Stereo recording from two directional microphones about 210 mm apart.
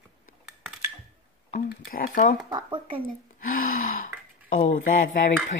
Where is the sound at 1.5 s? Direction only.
45° left (ahead or behind).